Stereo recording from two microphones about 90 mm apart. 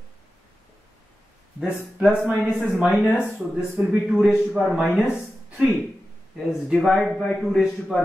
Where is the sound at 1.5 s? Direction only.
10° right (ahead or behind).